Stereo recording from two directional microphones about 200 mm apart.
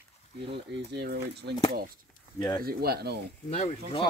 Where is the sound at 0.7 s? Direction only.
55° right (ahead or behind).